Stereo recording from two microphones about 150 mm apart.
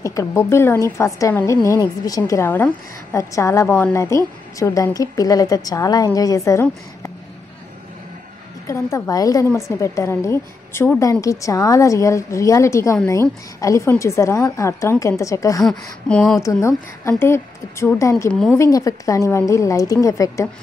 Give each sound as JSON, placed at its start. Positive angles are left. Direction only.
{"t": 0.0, "sound": "a woman's voice", "side_deg": 20}
{"t": 8.6, "sound": "a woman's voice", "side_deg": 20}
{"t": 15.6, "sound": "speech", "side_deg": 5}
{"t": 16.3, "sound": "a woman's voice", "side_deg": 20}